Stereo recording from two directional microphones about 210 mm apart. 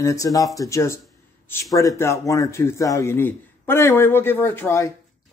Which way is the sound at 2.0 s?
15° left (ahead or behind).